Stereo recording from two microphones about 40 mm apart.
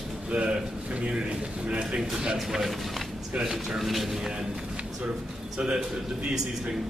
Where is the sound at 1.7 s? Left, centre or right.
Right.